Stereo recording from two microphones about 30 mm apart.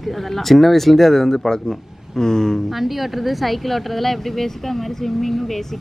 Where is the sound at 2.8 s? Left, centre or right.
Centre.